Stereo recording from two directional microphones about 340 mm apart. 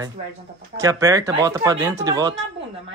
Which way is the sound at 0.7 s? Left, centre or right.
Centre.